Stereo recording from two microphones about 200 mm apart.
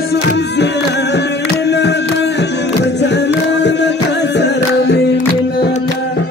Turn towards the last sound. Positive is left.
turn(degrees=60)  # may be behind; listen again after turning